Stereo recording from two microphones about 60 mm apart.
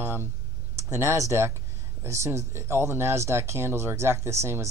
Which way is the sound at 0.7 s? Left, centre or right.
Right.